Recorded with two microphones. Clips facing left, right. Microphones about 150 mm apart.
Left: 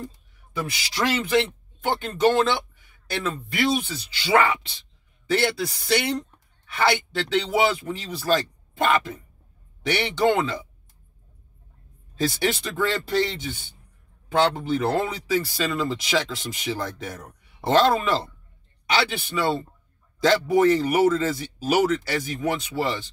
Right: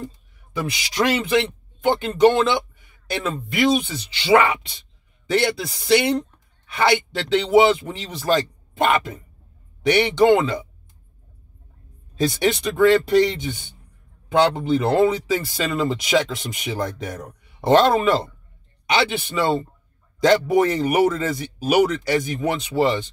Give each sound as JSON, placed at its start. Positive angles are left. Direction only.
{"t": 0.7, "sound": "a man's voice", "side_deg": -15}
{"t": 12.2, "sound": "speech", "side_deg": -20}